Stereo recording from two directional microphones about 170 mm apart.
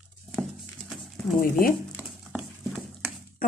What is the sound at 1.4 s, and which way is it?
Speech, 55° left (ahead or behind).